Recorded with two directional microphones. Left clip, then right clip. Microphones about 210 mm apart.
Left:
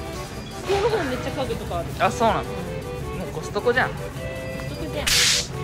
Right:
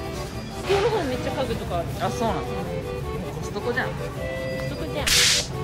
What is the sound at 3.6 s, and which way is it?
Speech, 15° right (ahead or behind).